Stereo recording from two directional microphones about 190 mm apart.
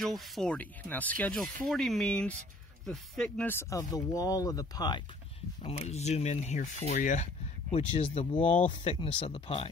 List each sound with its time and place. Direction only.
0.0 s speech: centre (ahead or behind); by 5.0 s 20° left (ahead or behind)
5.6 s speech: 30° left (ahead or behind)
8.5 s speech: 40° left (ahead or behind)
8.7 s speech: 25° left (ahead or behind)